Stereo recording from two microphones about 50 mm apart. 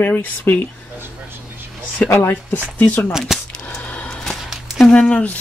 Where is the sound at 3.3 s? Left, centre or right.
Centre.